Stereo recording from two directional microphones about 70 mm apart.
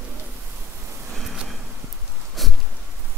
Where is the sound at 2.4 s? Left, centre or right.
Centre.